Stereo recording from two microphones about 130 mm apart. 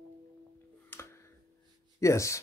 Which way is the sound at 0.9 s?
20° left (ahead or behind).